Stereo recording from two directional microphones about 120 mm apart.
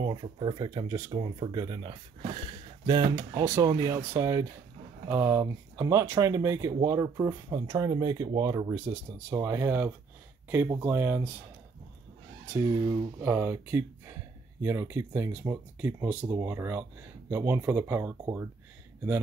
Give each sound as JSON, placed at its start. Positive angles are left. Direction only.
{"t": 0.0, "sound": "speech", "side_deg": -40}
{"t": 1.1, "sound": "speech", "side_deg": -40}
{"t": 3.0, "sound": "speech", "side_deg": -35}
{"t": 12.6, "sound": "speech", "side_deg": -30}